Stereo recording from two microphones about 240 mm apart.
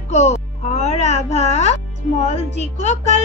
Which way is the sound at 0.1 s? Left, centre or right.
Left.